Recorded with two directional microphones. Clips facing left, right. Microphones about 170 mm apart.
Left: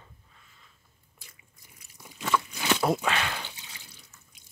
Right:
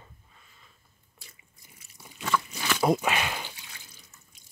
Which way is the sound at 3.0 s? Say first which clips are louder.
Right 1 dB; 10° right (ahead or behind).